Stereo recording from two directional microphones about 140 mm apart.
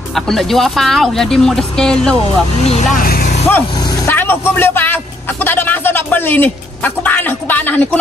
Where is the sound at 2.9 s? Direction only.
90° left.